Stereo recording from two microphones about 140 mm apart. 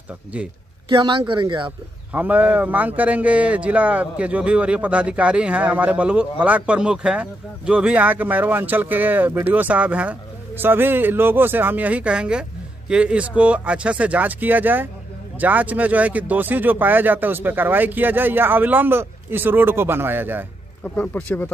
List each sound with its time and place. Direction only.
0.8 s speech: 30° right (ahead or behind)
2.1 s a man's voice: 10° right (ahead or behind)
20.8 s speech: 10° left (ahead or behind)